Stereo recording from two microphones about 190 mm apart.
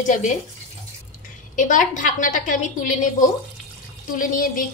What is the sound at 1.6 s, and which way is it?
A woman's voice, 45° left (ahead or behind).